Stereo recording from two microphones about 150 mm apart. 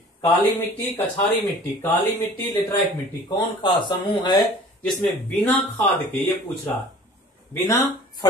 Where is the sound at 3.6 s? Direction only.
30° left (ahead or behind).